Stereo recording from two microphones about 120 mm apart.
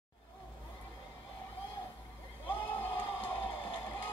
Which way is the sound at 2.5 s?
15° left (ahead or behind).